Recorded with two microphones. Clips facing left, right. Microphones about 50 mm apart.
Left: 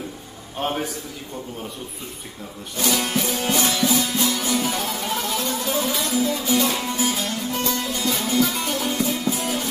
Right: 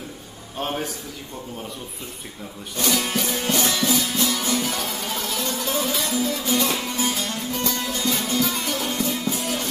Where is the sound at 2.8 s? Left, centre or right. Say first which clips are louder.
Left 1 dB; centre.